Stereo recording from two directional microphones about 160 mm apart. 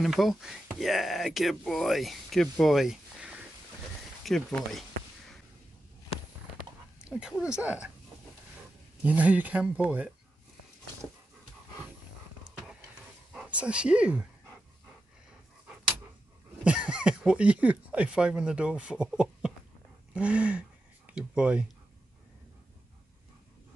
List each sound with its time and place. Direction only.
0.0 s speech: centre (ahead or behind)
7.0 s speech: 5° right (ahead or behind)
9.0 s speech: 10° right (ahead or behind)
13.3 s speech: 5° right (ahead or behind)
16.6 s speech: 5° right (ahead or behind)